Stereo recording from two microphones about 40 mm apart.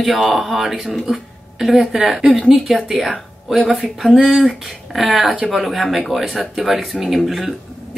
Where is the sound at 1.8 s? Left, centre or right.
Centre.